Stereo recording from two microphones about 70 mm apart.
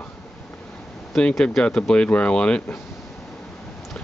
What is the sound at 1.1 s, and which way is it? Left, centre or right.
Speech, centre.